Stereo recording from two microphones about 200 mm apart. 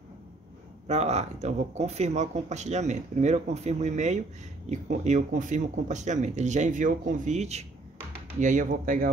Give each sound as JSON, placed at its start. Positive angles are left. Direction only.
{"t": 0.8, "sound": "speech", "side_deg": -35}